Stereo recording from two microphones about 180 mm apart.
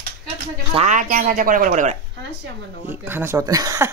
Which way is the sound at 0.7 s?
40° right (ahead or behind).